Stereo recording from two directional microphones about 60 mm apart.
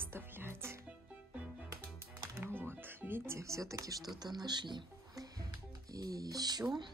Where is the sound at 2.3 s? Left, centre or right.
Right.